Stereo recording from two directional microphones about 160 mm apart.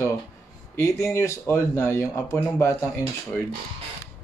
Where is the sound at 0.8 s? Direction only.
15° left (ahead or behind).